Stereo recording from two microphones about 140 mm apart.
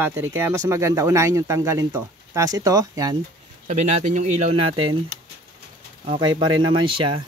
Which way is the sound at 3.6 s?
50° right (ahead or behind).